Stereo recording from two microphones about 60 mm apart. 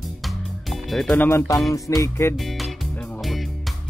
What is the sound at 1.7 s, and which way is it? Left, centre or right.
Music, left.